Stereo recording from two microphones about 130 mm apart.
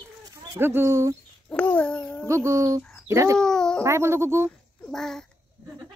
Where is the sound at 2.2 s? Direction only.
20° right (ahead or behind).